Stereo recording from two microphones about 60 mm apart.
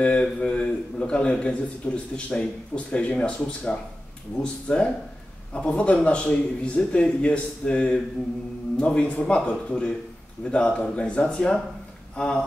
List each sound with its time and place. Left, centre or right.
0.0 s a man's voice: centre